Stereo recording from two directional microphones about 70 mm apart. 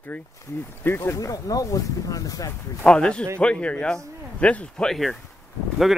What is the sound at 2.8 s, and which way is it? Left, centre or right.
Speech, centre.